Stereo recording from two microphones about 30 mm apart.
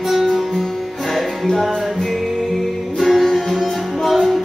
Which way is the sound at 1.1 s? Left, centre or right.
Centre.